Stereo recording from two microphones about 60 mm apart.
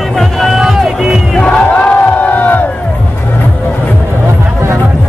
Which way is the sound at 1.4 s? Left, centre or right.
Left.